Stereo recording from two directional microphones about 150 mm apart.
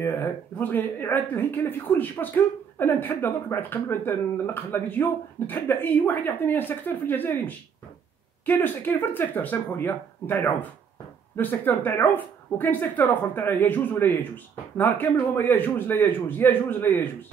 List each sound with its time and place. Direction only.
0.0 s speech: 15° left (ahead or behind)